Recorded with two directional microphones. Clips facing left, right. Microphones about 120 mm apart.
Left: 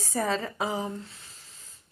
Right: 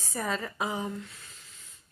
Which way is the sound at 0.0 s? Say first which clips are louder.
Left 4 dB; 30° left (ahead or behind).